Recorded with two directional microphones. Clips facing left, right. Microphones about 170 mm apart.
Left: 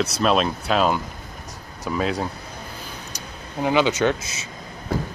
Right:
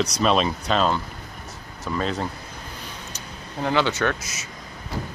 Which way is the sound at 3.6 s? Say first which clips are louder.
Left 3 dB; 15° left (ahead or behind).